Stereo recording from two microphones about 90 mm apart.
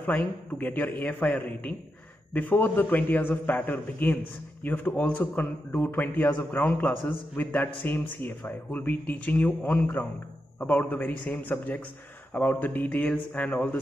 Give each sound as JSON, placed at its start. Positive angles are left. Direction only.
{"t": 0.0, "sound": "a man's voice", "side_deg": 15}